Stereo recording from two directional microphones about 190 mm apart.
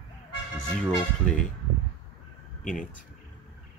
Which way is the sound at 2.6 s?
45° left (ahead or behind).